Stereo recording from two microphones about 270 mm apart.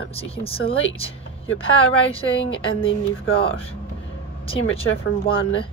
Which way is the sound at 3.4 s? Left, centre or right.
Left.